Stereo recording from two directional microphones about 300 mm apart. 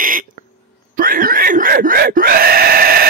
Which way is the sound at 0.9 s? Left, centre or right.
Right.